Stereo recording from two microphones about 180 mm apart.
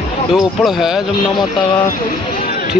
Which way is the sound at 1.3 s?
25° left (ahead or behind).